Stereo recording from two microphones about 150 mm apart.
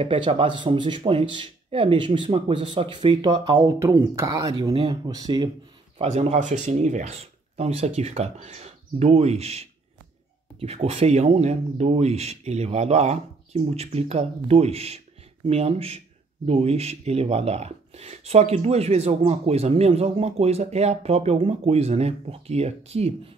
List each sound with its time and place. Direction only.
0.0 s speech: 35° right (ahead or behind)
5.9 s speech: 45° right (ahead or behind)